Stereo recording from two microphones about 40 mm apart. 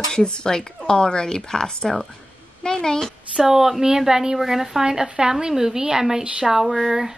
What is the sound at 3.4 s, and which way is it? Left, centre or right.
Speech, centre.